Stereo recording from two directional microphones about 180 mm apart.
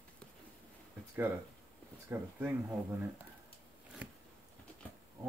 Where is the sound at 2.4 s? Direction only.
10° right (ahead or behind).